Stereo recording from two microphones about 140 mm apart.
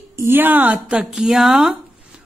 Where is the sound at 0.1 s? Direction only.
15° right (ahead or behind).